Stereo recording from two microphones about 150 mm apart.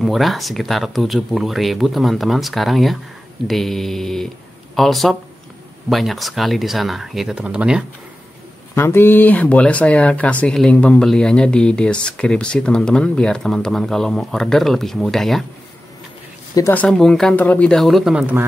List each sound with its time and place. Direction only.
0.0 s speech: centre (ahead or behind)
8.7 s speech: 15° left (ahead or behind)
16.5 s speech: 20° left (ahead or behind)
16.8 s speech: 5° left (ahead or behind)